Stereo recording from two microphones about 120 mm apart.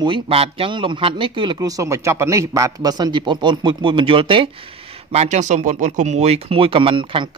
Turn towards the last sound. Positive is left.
turn(degrees=-45)  # may be behind; listen again after turning